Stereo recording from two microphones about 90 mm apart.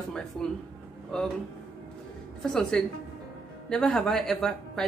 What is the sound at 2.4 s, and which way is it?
Speech, 5° left (ahead or behind).